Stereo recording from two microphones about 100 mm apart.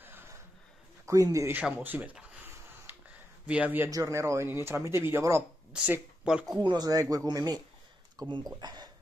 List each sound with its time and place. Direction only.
0.0 s a sound: 20° right (ahead or behind)
1.0 s a man's voice: 35° right (ahead or behind)
1.5 s a sound: 15° right (ahead or behind)
3.4 s speech: 15° right (ahead or behind)
3.9 s speech: 30° right (ahead or behind)
5.7 s speech: 10° right (ahead or behind)
6.6 s speech: 45° right (ahead or behind)